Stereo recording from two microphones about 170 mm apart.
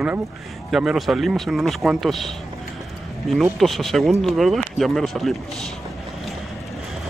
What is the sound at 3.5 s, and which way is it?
Speech, centre (ahead or behind).